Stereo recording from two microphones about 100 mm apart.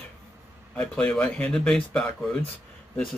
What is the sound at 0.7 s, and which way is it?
Speech, 10° left (ahead or behind).